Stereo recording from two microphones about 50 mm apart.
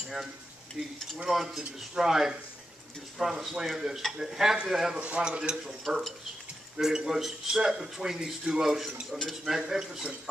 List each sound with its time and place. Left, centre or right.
1.1 s speech: centre
5.0 s speech: right
7.1 s speech: centre